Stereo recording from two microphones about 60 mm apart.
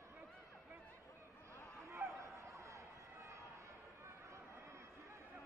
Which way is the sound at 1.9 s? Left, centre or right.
Right.